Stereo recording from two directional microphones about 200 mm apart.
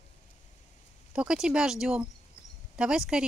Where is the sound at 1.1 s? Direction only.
5° right (ahead or behind).